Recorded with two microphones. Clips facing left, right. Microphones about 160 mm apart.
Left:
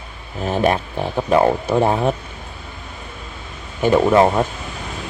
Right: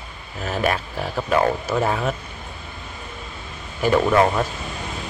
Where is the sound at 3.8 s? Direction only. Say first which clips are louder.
Left 4 dB; 25° left (ahead or behind).